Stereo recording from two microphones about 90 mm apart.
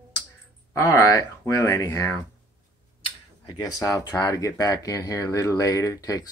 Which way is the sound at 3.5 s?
45° left (ahead or behind).